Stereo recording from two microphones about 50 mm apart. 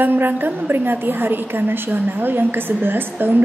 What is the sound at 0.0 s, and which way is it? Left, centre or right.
A woman's voice, right.